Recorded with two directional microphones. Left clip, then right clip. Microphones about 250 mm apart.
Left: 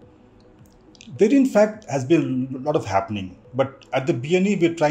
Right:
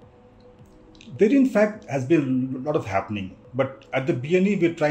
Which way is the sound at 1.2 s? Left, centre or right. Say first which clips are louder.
Left 2 dB; left.